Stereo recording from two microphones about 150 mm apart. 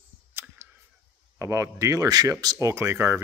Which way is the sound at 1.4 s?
20° right (ahead or behind).